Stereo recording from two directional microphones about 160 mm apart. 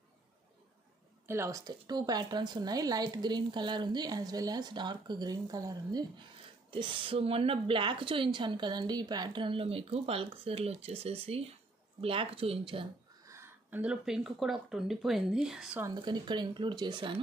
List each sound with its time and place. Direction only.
1.2 s a woman's voice: 15° right (ahead or behind); by 12.8 s 35° right (ahead or behind)
13.3 s speech: 15° right (ahead or behind)
15.8 s speech: 25° right (ahead or behind)